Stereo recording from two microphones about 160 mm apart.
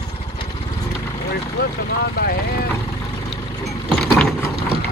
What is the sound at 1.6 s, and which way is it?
Vehicle, 70° left (ahead or behind).